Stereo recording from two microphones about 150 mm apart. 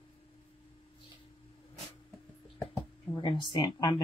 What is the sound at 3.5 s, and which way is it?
Speech, 30° left (ahead or behind).